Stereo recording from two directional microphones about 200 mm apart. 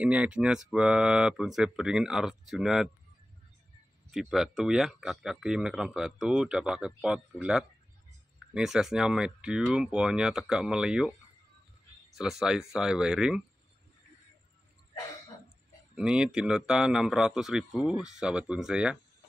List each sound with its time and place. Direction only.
0.0 s speech: 5° right (ahead or behind)
4.1 s speech: centre (ahead or behind)
12.2 s speech: centre (ahead or behind)
15.9 s speech: 5° right (ahead or behind)